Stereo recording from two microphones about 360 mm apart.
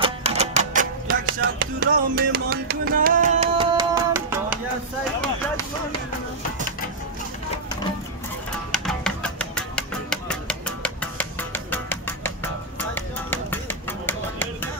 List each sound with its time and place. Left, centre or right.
0.0 s typewriter: centre
8.7 s music: centre